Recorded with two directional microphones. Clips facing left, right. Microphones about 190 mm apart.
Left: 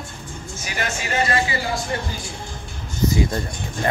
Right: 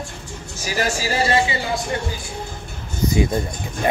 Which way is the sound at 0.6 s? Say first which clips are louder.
Right 6 dB; 35° right (ahead or behind).